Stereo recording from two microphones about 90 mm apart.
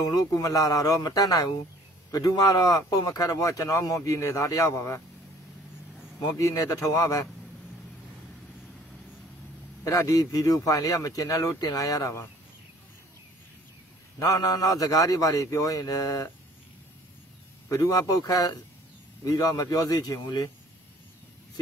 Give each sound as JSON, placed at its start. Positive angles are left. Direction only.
{"t": 0.0, "sound": "a man's voice", "side_deg": 45}
{"t": 6.1, "sound": "a man's voice", "side_deg": 35}
{"t": 9.8, "sound": "a man's voice", "side_deg": 40}
{"t": 14.2, "sound": "a man's voice", "side_deg": 40}
{"t": 17.6, "sound": "speech", "side_deg": 40}